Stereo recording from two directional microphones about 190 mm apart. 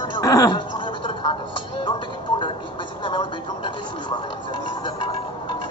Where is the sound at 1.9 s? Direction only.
25° left (ahead or behind).